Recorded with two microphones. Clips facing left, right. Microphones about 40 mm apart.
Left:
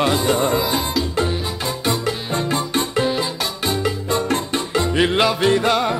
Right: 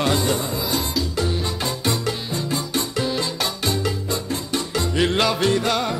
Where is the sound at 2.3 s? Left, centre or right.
Left.